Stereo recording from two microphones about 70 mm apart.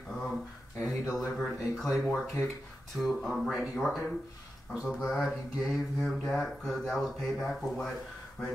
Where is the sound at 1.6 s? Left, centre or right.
Centre.